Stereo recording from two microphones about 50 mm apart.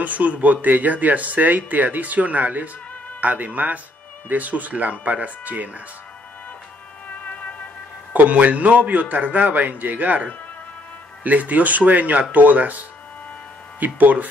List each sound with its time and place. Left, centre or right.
0.0 s speech: right
7.2 s music: left
8.1 s speech: right
11.2 s speech: right
13.7 s speech: right